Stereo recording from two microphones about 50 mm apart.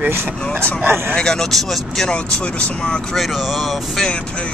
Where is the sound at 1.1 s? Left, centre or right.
Centre.